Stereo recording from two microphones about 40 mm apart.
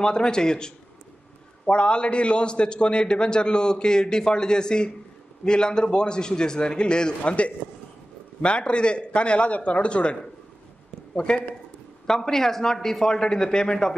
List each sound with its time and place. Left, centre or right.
0.0 s a man's voice: centre
11.1 s a man's voice: left
12.1 s speech: centre